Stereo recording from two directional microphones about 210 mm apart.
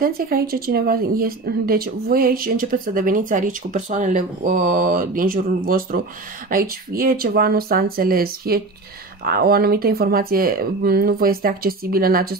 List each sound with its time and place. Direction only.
0.0 s speech: 45° right (ahead or behind)